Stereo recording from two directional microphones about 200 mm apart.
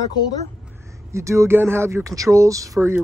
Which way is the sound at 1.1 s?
15° right (ahead or behind).